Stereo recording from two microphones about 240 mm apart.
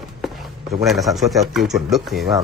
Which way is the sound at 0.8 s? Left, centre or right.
Centre.